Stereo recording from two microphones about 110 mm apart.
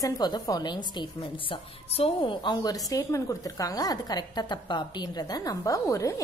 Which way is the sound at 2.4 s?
40° left (ahead or behind).